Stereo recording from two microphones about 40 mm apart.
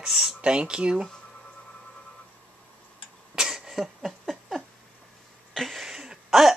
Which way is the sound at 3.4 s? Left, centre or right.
Centre.